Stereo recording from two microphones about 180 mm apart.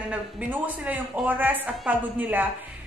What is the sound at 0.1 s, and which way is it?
A woman's voice, 10° right (ahead or behind).